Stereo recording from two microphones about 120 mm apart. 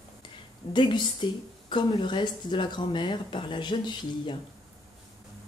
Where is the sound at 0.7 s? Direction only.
40° left (ahead or behind).